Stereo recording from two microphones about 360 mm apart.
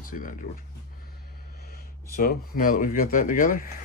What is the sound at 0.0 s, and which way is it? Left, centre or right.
Speech, left.